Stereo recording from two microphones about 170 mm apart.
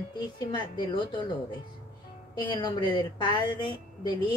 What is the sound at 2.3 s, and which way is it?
A woman's voice, 25° left (ahead or behind).